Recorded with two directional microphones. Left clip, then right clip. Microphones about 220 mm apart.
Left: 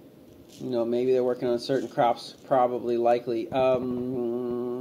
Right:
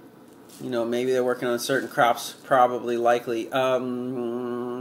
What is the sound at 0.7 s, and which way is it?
Speech, 30° right (ahead or behind).